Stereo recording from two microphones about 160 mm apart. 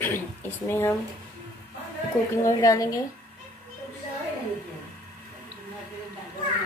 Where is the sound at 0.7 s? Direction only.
15° left (ahead or behind).